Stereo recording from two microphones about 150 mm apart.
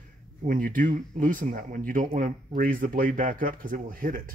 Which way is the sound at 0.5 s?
65° right (ahead or behind).